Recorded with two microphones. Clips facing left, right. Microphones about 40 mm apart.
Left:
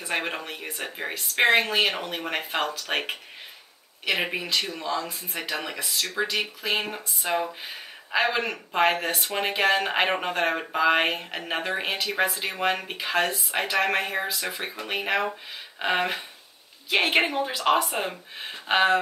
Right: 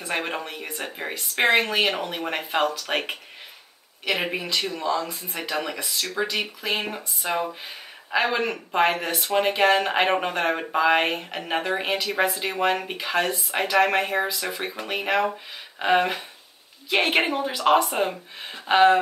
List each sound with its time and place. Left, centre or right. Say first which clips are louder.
0.1 s speech: right 1 dB; centre